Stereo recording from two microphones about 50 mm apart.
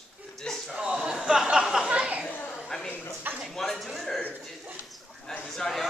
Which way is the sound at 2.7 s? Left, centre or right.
Centre.